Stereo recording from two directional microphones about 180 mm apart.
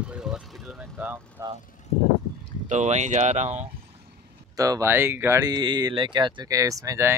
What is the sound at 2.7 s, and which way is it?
Speech, 40° right (ahead or behind).